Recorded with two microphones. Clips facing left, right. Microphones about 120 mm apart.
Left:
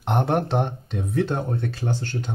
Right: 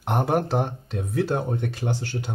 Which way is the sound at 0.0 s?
5° right (ahead or behind).